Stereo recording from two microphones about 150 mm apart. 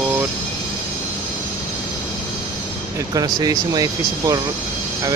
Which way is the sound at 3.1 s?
25° right (ahead or behind).